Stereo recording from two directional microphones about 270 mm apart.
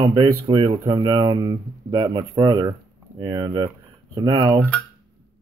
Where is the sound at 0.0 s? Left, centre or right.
Centre.